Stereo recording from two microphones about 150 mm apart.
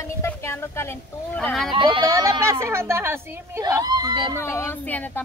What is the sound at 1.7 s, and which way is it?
Speech, 35° right (ahead or behind).